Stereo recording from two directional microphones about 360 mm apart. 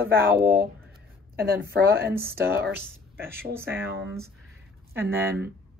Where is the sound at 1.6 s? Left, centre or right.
Right.